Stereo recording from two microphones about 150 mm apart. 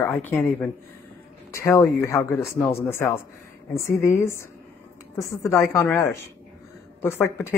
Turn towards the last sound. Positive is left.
turn(degrees=15)  # may be behind; listen again after turning